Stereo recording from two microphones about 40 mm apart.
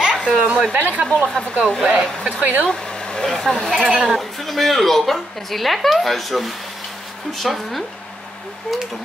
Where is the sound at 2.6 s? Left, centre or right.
Centre.